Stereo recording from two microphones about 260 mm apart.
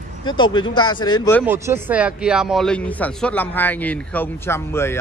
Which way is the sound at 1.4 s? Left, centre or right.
Centre.